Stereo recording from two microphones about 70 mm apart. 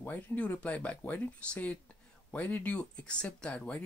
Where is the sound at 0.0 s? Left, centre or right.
Left.